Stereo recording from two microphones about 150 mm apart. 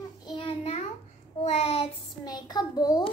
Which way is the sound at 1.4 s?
45° left (ahead or behind).